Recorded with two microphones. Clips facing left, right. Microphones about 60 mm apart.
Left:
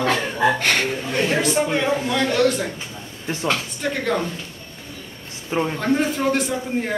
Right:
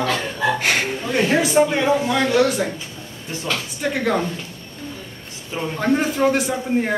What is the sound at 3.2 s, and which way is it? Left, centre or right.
Speech, left.